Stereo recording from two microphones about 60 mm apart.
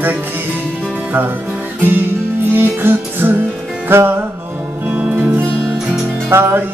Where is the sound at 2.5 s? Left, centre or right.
Right.